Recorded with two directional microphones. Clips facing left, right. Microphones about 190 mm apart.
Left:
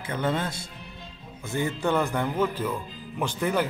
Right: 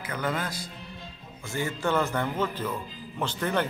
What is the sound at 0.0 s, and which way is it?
A man's voice, 25° left (ahead or behind).